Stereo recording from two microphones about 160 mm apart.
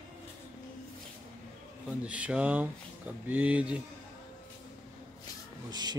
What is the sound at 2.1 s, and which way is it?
Speech, 10° right (ahead or behind).